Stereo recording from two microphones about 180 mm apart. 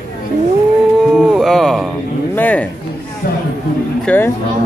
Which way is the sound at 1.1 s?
Centre (ahead or behind).